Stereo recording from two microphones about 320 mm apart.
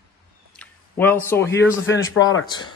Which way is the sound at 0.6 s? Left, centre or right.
Centre.